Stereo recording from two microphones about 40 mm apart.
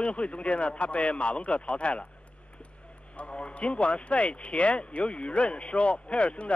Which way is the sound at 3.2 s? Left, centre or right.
Left.